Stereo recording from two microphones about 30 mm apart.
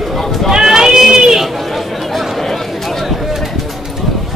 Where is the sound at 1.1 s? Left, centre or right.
Centre.